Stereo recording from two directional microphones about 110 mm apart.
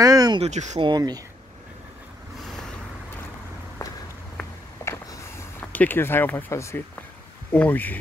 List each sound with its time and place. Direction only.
0.0 s a sound: 35° right (ahead or behind)
0.4 s speech: 90° right
0.7 s speech: 45° right (ahead or behind)
4.8 s a sound: 25° left (ahead or behind)
5.6 s speech: 15° left (ahead or behind)
7.5 s speech: 15° left (ahead or behind)